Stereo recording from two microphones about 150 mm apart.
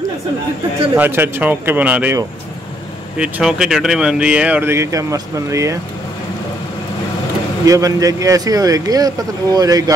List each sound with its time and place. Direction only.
0.9 s speech: 15° right (ahead or behind)
3.2 s speech: 5° right (ahead or behind); by 5.8 s 20° right (ahead or behind)
7.6 s speech: 20° right (ahead or behind)